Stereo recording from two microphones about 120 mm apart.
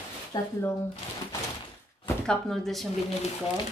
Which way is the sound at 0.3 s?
35° left (ahead or behind).